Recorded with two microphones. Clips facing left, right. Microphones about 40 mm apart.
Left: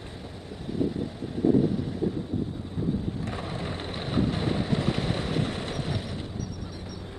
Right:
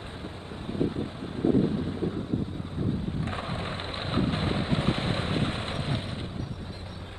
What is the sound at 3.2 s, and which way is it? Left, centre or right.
Vehicle, right.